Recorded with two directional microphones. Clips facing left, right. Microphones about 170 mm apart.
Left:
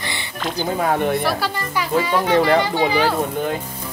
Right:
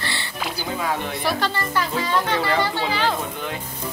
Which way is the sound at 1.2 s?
5° left (ahead or behind).